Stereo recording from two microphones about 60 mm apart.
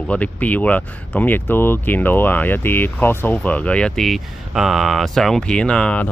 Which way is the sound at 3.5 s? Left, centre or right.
Left.